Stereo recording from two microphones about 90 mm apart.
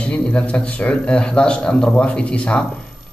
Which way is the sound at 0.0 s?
15° left (ahead or behind).